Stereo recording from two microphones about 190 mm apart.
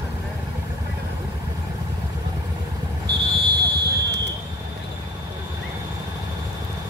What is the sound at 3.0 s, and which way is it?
Fire alarm, 60° right (ahead or behind).